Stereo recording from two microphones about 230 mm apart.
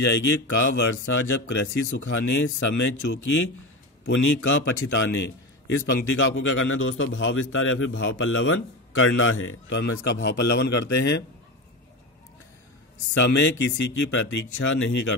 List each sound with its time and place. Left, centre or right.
0.0 s a man's voice: left
13.1 s speech: left